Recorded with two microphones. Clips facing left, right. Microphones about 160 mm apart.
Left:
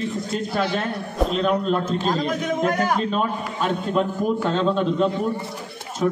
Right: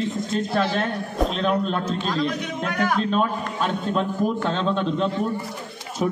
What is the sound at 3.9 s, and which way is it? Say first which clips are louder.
A man's voice: left 2 dB; 5° left (ahead or behind).